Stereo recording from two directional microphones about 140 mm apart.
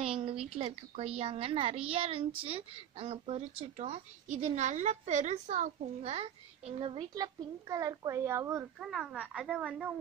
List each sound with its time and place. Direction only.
0.0 s a woman's voice: 40° right (ahead or behind); by 8.6 s 20° right (ahead or behind)
8.8 s a woman's voice: 5° right (ahead or behind)